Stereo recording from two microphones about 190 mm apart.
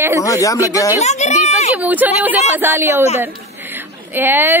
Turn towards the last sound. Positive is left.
turn(degrees=-10)  # may be behind; listen again after turning